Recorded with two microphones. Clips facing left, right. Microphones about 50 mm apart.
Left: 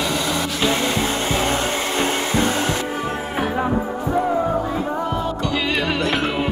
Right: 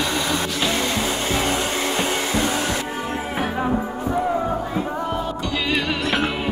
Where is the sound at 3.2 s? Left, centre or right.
Centre.